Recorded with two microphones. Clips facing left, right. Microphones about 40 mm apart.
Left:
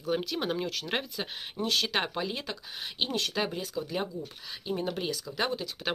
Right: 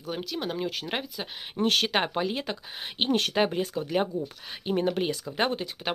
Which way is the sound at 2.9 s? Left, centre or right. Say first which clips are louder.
Right 6 dB; right.